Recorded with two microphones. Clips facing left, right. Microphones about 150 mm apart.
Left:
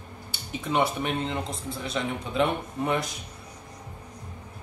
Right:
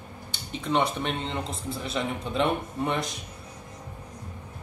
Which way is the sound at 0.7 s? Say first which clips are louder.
Even; 5° left (ahead or behind).